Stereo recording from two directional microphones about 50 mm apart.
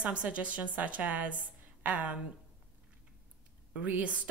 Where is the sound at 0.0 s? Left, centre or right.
Right.